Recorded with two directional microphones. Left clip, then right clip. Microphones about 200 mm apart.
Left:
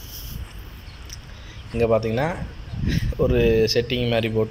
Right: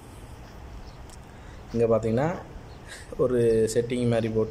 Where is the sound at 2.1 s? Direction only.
10° right (ahead or behind).